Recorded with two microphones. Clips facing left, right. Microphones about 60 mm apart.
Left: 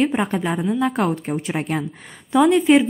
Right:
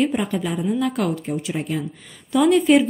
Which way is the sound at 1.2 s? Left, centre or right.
Left.